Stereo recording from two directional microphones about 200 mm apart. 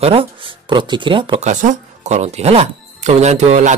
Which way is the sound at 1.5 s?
35° right (ahead or behind).